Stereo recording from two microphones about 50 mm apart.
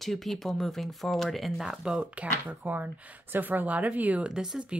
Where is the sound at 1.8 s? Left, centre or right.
Centre.